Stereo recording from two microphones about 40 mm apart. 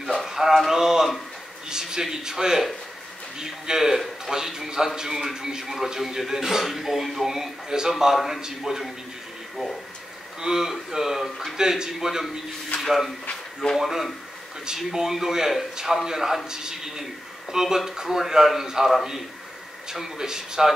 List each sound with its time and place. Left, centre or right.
0.3 s a sound: centre
0.7 s a man's voice: centre
10.4 s a man's voice: centre